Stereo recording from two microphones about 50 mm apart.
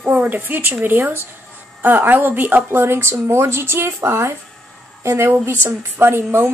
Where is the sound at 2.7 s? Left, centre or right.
Right.